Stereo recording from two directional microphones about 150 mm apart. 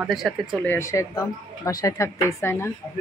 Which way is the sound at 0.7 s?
20° left (ahead or behind).